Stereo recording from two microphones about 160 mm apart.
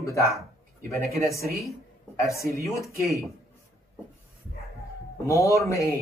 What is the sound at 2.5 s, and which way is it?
Speech, 20° left (ahead or behind).